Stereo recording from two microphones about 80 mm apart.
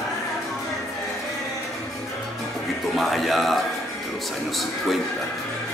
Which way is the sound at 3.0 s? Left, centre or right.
Centre.